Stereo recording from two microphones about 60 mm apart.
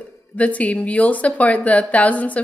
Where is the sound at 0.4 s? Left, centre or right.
Left.